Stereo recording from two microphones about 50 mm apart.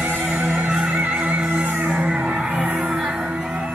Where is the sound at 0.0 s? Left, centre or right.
Right.